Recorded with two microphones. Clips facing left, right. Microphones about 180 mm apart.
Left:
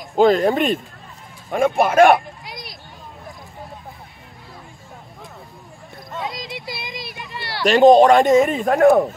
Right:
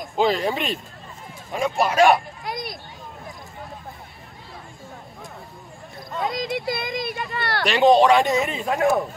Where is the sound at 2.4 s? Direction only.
50° right (ahead or behind).